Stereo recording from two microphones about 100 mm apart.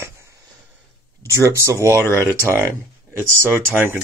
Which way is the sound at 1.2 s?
30° right (ahead or behind).